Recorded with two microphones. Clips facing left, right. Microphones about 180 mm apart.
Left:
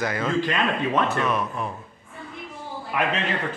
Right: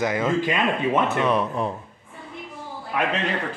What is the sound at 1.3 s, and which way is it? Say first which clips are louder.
Speech: right 4 dB; 30° right (ahead or behind).